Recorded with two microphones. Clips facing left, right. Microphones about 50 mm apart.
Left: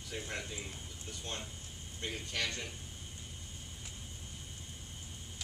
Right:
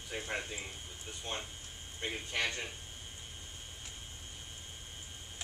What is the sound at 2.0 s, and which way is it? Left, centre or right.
Speech, right.